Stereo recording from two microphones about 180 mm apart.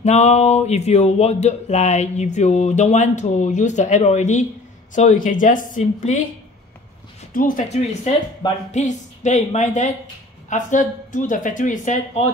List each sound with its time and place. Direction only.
0.0 s speech: 40° left (ahead or behind)
7.3 s speech: 45° left (ahead or behind)
8.4 s speech: 25° left (ahead or behind)
8.7 s speech: 40° left (ahead or behind)